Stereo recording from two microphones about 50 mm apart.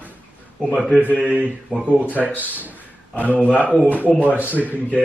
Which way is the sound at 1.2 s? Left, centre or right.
Right.